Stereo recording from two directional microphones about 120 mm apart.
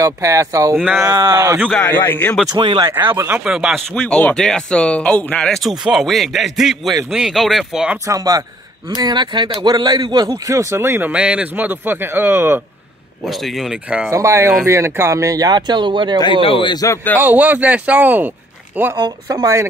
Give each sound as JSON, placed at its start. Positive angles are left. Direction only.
{"t": 0.0, "sound": "speech", "side_deg": -25}
{"t": 1.8, "sound": "a man's voice", "side_deg": 15}
{"t": 2.5, "sound": "speech", "side_deg": -40}
{"t": 3.0, "sound": "speech", "side_deg": -15}
{"t": 3.3, "sound": "speech", "side_deg": -5}
{"t": 8.1, "sound": "speech", "side_deg": -30}
{"t": 13.6, "sound": "speech", "side_deg": -10}
{"t": 14.1, "sound": "speech", "side_deg": -25}
{"t": 16.4, "sound": "a man's voice", "side_deg": 45}
{"t": 17.2, "sound": "speech", "side_deg": -15}
{"t": 18.9, "sound": "speech", "side_deg": -35}